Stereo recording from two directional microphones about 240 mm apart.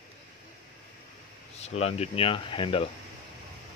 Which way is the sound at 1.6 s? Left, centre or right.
Left.